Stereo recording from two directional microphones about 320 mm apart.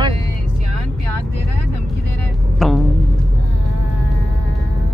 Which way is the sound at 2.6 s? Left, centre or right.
Centre.